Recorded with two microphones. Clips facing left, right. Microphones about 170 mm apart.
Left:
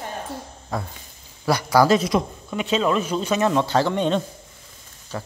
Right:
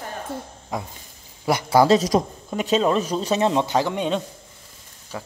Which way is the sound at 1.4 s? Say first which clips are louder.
Even; 20° right (ahead or behind).